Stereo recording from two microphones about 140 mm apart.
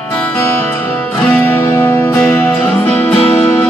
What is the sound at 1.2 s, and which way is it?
Music, 15° left (ahead or behind).